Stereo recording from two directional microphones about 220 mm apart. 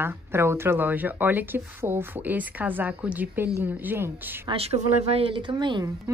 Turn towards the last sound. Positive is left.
turn(degrees=-20)  # may be behind; listen again after turning